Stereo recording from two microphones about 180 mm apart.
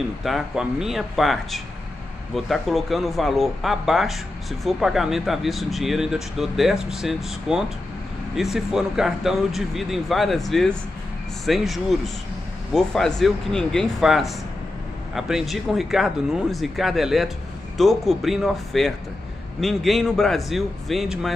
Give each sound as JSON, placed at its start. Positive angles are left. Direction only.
{"t": 0.2, "sound": "speech", "side_deg": 0}